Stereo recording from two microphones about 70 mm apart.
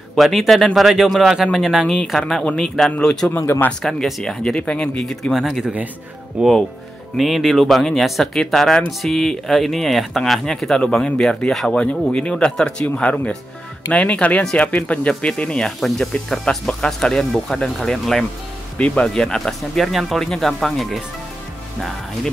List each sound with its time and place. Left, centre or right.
0.1 s speech: centre
3.3 s speech: left
3.8 s speech: centre
5.3 s speech: centre
6.4 s speech: centre
7.2 s speech: centre
11.7 s speech: centre
18.8 s speech: centre